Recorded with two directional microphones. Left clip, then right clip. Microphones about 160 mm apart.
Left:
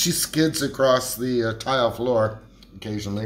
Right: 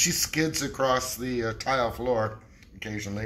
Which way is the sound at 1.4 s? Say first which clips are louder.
Left 4 dB; 5° right (ahead or behind).